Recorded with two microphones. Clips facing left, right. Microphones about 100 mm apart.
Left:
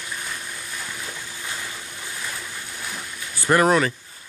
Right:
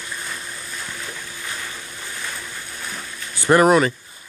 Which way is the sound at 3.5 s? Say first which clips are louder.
Right 4 dB; 10° right (ahead or behind).